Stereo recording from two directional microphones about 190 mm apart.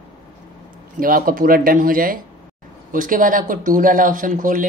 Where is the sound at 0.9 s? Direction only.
50° right (ahead or behind).